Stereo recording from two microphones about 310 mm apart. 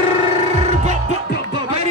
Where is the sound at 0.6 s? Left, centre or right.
Right.